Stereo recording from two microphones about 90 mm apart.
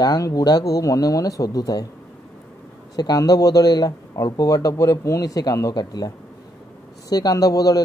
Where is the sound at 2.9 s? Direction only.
45° left (ahead or behind).